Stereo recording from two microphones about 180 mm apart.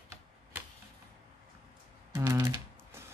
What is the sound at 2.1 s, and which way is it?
Typing, 15° right (ahead or behind).